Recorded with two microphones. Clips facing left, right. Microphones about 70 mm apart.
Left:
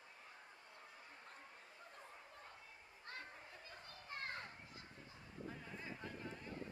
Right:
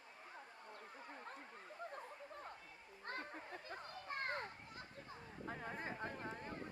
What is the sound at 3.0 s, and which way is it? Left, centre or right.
Children playing, right.